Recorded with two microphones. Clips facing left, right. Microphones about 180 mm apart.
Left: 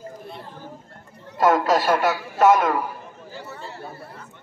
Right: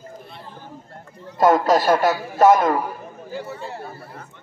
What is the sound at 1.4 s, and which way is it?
A man's voice, 35° right (ahead or behind).